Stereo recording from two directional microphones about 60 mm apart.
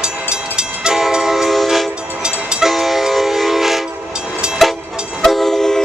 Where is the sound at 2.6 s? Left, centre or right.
Centre.